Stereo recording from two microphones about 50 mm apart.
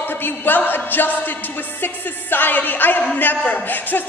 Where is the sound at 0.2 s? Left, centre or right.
Left.